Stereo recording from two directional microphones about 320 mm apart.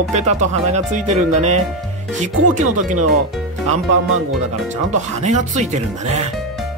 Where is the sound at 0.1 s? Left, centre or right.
Right.